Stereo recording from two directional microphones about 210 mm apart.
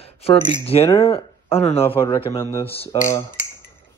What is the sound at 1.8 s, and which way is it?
Speech, 10° left (ahead or behind).